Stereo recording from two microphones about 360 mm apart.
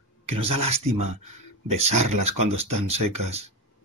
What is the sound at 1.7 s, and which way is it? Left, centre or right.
Speech, right.